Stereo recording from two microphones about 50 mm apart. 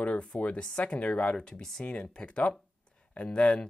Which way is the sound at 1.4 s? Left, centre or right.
Centre.